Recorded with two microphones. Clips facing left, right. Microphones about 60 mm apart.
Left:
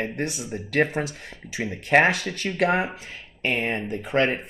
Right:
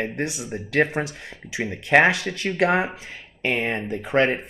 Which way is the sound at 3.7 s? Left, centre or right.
Right.